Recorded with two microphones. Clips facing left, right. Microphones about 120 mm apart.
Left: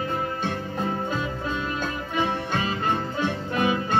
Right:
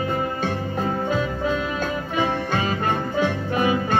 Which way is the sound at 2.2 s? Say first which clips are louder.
Right 2 dB; 50° right (ahead or behind).